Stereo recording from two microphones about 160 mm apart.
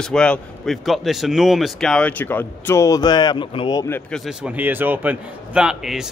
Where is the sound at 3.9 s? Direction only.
10° left (ahead or behind).